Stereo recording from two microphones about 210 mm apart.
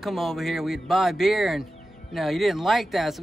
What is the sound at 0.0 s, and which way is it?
Speech, centre (ahead or behind).